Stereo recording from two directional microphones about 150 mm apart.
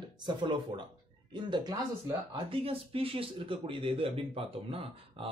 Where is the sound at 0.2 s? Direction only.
30° right (ahead or behind).